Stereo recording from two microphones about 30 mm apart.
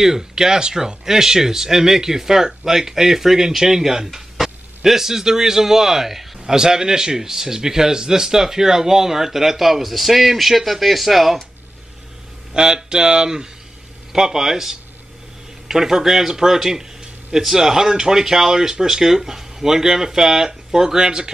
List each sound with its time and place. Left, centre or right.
0.0 s speech: centre
6.5 s speech: right; by 11.3 s centre
12.5 s speech: right